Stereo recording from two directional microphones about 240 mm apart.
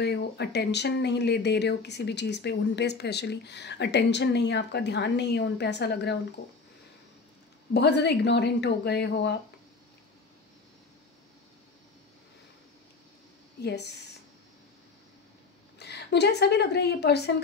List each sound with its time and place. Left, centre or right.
0.0 s speech: left
7.7 s speech: left
13.6 s speech: left
15.8 s a woman's voice: left